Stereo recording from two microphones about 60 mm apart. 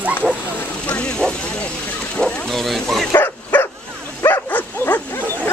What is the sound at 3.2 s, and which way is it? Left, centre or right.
Dog, left.